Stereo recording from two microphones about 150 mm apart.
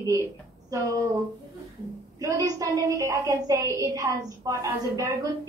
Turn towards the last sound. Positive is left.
turn(degrees=-25)  # may be behind; listen again after turning